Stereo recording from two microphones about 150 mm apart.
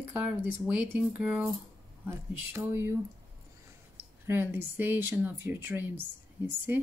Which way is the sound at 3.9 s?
15° right (ahead or behind).